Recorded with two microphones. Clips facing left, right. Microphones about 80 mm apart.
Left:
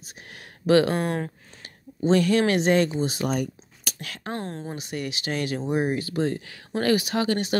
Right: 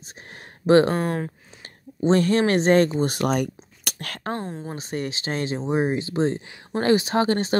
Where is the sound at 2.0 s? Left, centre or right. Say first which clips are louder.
Right 1 dB; right.